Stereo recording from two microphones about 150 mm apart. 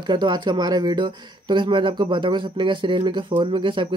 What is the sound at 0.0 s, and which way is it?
Speech, 30° right (ahead or behind).